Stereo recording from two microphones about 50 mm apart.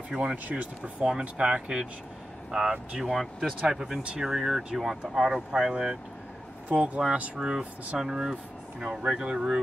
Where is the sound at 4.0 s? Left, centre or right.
Right.